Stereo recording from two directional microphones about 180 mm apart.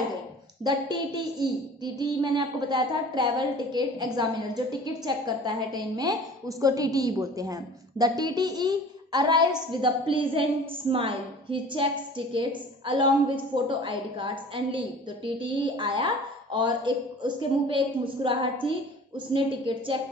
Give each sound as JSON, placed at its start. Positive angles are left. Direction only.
{"t": 0.7, "sound": "a woman's voice", "side_deg": -25}